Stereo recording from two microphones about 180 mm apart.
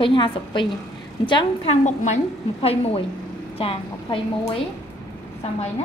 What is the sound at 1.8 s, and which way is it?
A woman's voice, 40° left (ahead or behind).